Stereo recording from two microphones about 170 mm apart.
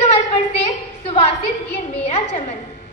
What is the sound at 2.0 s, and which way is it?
Speech, 40° left (ahead or behind).